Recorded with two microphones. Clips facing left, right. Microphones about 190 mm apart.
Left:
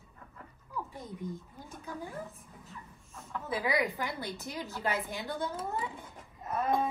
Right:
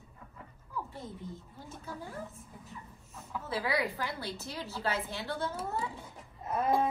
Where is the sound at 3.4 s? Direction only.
15° left (ahead or behind).